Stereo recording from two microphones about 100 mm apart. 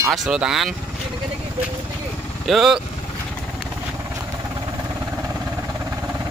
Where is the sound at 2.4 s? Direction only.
5° right (ahead or behind).